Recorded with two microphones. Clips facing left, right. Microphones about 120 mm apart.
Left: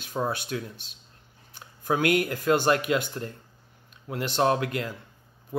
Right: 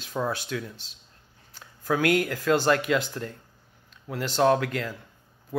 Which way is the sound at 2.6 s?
20° left (ahead or behind).